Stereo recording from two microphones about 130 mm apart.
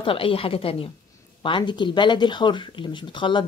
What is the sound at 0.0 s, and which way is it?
A woman's voice, 45° left (ahead or behind).